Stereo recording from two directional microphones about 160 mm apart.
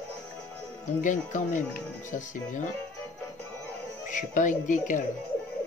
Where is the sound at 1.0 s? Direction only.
55° left (ahead or behind).